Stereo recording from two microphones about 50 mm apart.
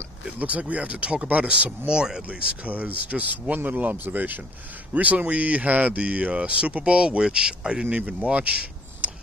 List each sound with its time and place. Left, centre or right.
0.2 s speech: right
1.9 s speech: centre
2.2 s speech: right
9.0 s a sound: right